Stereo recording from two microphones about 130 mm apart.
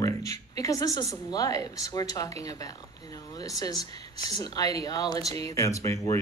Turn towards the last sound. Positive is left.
turn(degrees=25)  # may be behind; listen again after turning